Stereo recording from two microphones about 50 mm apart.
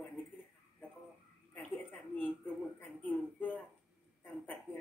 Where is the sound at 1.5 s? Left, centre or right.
Left.